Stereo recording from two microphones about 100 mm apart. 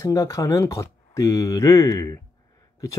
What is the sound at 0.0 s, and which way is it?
Speech, 30° left (ahead or behind).